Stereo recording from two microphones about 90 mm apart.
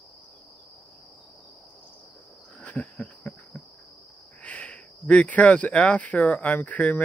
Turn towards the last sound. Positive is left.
turn(degrees=15)  # may be behind; listen again after turning